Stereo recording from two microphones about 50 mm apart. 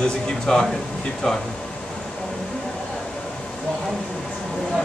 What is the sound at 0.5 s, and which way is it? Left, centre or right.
Speech, centre.